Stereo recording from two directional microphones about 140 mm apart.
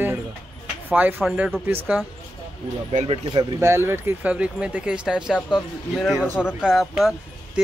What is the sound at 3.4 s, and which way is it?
Speech, 20° right (ahead or behind).